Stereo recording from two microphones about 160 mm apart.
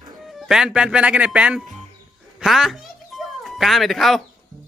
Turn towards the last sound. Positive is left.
turn(degrees=0)  # may be behind; listen again after turning